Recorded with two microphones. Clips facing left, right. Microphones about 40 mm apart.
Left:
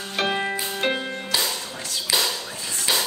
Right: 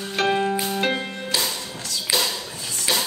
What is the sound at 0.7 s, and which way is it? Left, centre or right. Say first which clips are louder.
Music: right 1 dB; centre.